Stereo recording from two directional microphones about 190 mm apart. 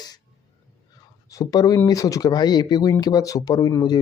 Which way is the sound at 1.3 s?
20° left (ahead or behind).